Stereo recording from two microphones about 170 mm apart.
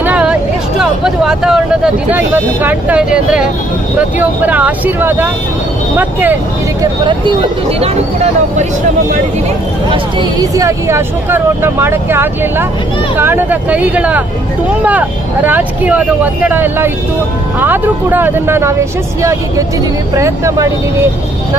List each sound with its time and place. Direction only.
0.0 s vehicle: 5° right (ahead or behind)
2.0 s speech: 10° right (ahead or behind)
6.8 s speech: 30° right (ahead or behind)
10.4 s speech: 20° right (ahead or behind)
20.2 s speech: 20° right (ahead or behind)